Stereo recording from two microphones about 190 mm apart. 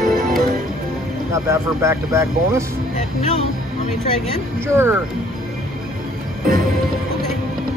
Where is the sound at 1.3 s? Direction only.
15° right (ahead or behind).